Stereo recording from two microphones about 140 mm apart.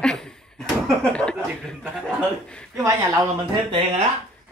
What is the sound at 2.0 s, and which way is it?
Speech, 5° left (ahead or behind).